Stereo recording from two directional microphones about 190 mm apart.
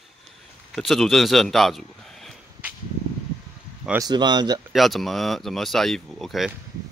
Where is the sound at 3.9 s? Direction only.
20° right (ahead or behind).